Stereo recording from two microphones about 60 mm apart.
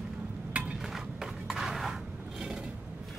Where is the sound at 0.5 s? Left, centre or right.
Right.